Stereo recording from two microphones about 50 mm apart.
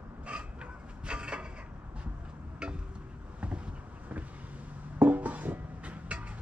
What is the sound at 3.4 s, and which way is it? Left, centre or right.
Music, right.